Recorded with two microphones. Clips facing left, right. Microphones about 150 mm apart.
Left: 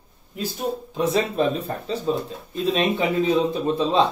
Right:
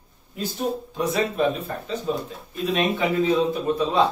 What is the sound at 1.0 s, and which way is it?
Speech, 30° left (ahead or behind).